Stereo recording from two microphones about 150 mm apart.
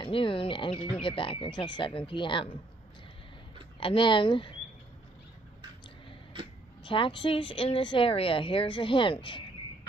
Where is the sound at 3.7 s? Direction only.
35° left (ahead or behind).